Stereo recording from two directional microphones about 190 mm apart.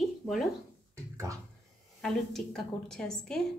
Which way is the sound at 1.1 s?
15° right (ahead or behind).